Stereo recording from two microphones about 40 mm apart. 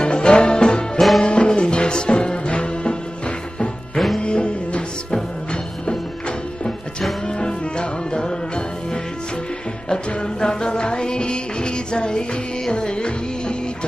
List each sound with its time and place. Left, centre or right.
0.0 s music: left
0.9 s music: centre
1.2 s music: left
7.2 s music: left
9.8 s music: centre